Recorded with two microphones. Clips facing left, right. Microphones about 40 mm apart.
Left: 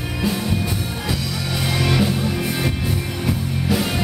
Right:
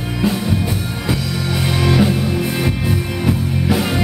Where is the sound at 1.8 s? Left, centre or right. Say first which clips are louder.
Right 5 dB; centre.